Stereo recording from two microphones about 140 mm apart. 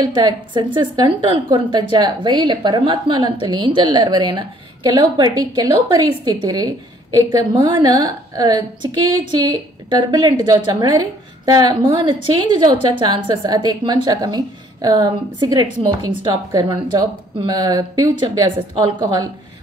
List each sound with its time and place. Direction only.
0.0 s a woman's voice: 30° right (ahead or behind)